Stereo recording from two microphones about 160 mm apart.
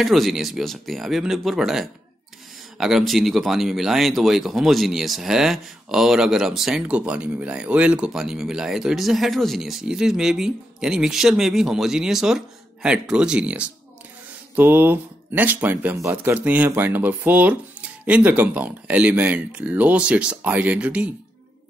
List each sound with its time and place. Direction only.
0.0 s speech: centre (ahead or behind)